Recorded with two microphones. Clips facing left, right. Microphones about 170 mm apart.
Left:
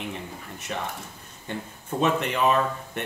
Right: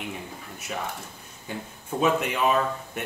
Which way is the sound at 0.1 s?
5° right (ahead or behind).